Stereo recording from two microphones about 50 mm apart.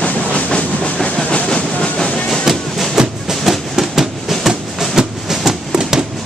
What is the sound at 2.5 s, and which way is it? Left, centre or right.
Music, centre.